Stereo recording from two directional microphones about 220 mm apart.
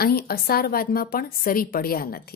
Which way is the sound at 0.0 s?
45° left (ahead or behind).